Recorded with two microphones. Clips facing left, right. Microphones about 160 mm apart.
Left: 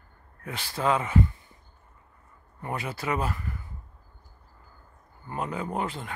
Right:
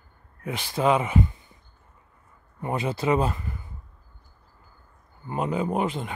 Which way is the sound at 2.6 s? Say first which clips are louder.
Right 6 dB; 20° right (ahead or behind).